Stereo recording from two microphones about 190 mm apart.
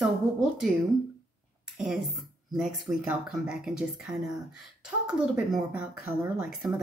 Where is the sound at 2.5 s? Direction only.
5° right (ahead or behind).